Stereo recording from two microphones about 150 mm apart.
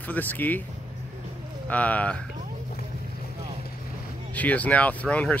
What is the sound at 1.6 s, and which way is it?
Speech, 10° left (ahead or behind).